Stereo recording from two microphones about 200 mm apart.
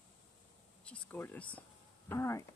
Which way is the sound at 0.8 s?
5° left (ahead or behind).